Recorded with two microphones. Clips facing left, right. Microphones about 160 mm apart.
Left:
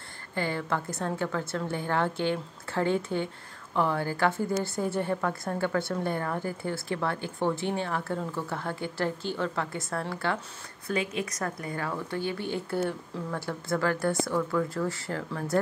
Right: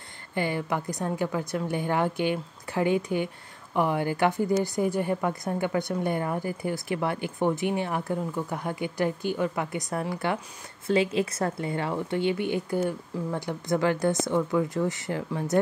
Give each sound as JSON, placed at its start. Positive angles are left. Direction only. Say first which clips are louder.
{"t": 0.3, "sound": "a woman's voice", "louder": "right 2 dB", "side_deg": -15}
{"t": 10.9, "sound": "speech", "louder": "right 6 dB", "side_deg": -30}